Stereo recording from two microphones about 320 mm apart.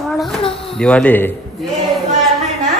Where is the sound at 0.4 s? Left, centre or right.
Centre.